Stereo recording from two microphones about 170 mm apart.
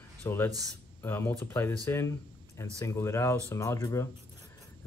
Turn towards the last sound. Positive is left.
turn(degrees=20)  # may be behind; listen again after turning